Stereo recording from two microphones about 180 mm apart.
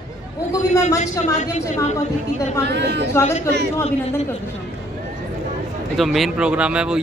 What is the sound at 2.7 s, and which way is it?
Speech, 70° right (ahead or behind).